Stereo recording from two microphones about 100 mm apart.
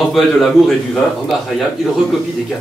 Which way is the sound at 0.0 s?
Centre (ahead or behind).